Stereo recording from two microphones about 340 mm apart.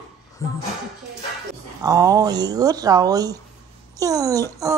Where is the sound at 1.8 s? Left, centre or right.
Centre.